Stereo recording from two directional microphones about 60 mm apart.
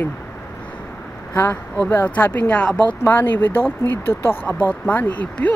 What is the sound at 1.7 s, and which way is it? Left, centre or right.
Speech, left.